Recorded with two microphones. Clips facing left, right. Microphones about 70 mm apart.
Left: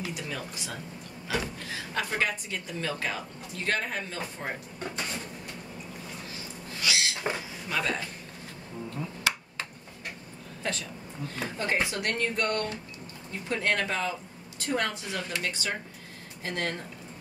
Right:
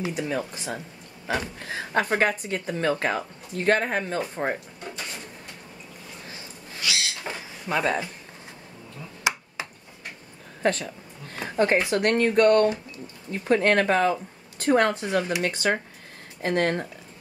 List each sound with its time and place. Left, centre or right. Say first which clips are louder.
0.1 s speech: right 8 dB; right
6.8 s cupboard open or close: even; left
7.6 s speech: right 6 dB; right
10.6 s speech: right 9 dB; right